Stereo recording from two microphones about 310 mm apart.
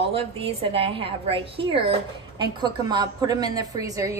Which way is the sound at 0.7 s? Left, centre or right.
Centre.